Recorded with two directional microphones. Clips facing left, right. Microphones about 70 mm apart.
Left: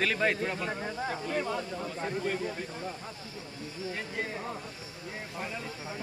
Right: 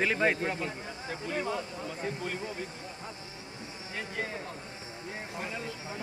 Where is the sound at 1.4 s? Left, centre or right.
Centre.